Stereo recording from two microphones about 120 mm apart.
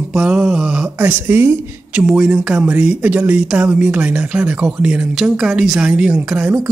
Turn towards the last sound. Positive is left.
turn(degrees=-10)  # may be behind; listen again after turning